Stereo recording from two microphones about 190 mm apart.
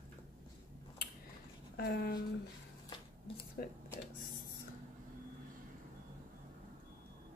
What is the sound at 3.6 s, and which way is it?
Speech, 50° left (ahead or behind).